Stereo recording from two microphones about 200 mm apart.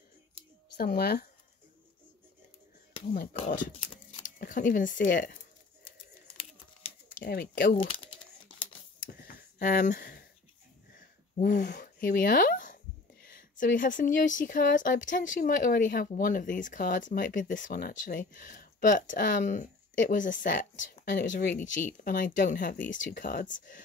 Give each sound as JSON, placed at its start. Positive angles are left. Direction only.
{"t": 0.7, "sound": "speech", "side_deg": 50}
{"t": 3.3, "sound": "speech", "side_deg": 40}
{"t": 7.2, "sound": "speech", "side_deg": 50}
{"t": 7.7, "sound": "speech", "side_deg": 25}
{"t": 9.2, "sound": "a sound", "side_deg": 40}
{"t": 11.3, "sound": "speech", "side_deg": 40}
{"t": 21.6, "sound": "speech", "side_deg": 40}